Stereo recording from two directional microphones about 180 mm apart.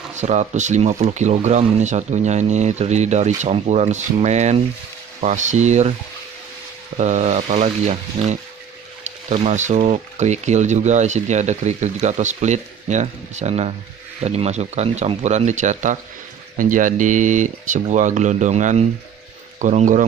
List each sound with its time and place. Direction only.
0.1 s speech: 40° right (ahead or behind)
7.0 s speech: 40° right (ahead or behind)